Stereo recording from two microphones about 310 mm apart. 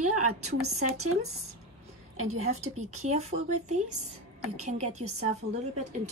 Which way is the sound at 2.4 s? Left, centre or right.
Right.